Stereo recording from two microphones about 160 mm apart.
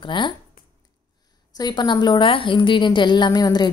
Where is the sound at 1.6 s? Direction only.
25° left (ahead or behind).